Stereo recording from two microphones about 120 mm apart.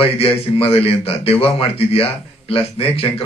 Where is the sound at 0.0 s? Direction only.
55° left (ahead or behind).